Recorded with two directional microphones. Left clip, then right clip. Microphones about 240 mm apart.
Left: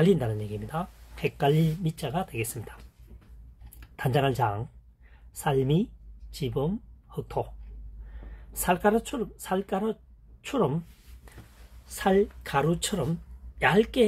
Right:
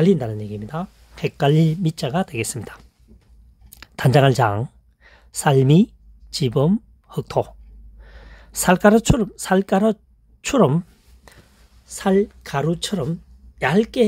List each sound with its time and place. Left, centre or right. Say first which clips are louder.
0.0 s speech: right 5 dB; right
3.8 s speech: right 10 dB; right
11.8 s speech: right 5 dB; right